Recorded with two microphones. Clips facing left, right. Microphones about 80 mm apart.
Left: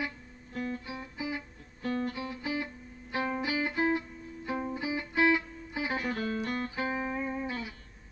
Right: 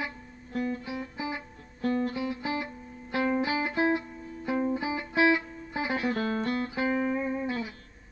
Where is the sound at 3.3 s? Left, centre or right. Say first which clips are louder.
Right 4 dB; right.